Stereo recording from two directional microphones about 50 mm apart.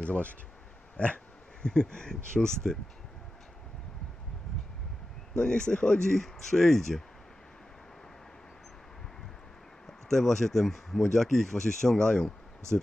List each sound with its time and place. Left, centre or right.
0.0 s speech: left
5.3 s speech: centre
9.8 s speech: centre